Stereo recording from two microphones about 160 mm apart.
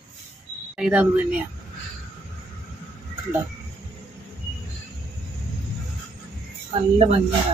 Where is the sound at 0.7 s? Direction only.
5° right (ahead or behind).